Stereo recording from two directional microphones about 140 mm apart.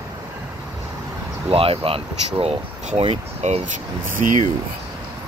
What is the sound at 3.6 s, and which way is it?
Speech, 70° right (ahead or behind).